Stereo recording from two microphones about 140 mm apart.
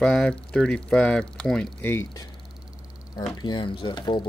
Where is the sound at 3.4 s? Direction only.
35° left (ahead or behind).